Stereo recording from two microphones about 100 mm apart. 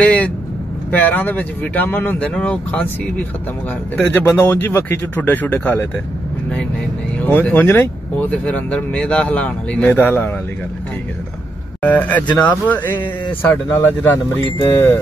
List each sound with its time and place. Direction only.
0.0 s speech: 15° left (ahead or behind)
7.2 s speech: 15° left (ahead or behind)
11.8 s speech: 15° left (ahead or behind)